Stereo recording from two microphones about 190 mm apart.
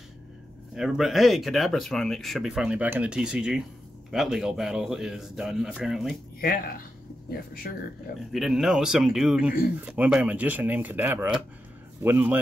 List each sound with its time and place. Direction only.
0.7 s speech: centre (ahead or behind)
6.4 s speech: 50° left (ahead or behind)
8.3 s speech: centre (ahead or behind)